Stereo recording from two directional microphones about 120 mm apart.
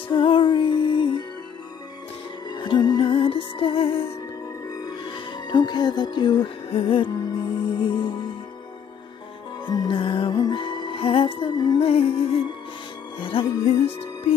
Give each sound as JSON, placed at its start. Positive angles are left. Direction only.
{"t": 0.1, "sound": "music", "side_deg": 40}
{"t": 2.5, "sound": "music", "side_deg": 40}
{"t": 4.8, "sound": "speech", "side_deg": 40}
{"t": 7.8, "sound": "music", "side_deg": 40}
{"t": 9.7, "sound": "music", "side_deg": 40}
{"t": 11.8, "sound": "music", "side_deg": 55}